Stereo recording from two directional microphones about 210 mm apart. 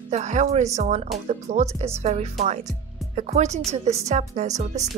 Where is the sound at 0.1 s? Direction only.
35° right (ahead or behind).